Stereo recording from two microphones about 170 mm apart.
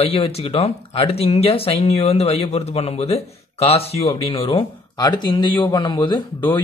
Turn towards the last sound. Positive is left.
turn(degrees=25)  # may be behind; listen again after turning